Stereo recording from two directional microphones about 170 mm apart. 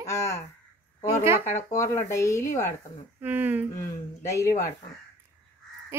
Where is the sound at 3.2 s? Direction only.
10° right (ahead or behind).